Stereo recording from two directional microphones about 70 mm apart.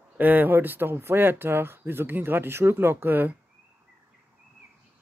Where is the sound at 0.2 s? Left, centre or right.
Right.